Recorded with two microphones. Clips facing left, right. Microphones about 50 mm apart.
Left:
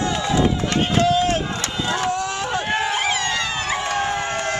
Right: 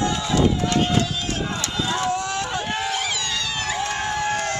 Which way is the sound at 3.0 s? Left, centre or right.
Left.